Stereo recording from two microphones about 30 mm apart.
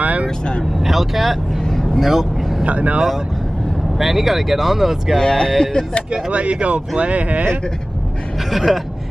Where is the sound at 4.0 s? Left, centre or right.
Centre.